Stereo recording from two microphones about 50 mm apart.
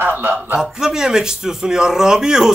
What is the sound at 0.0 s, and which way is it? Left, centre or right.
Speech, right.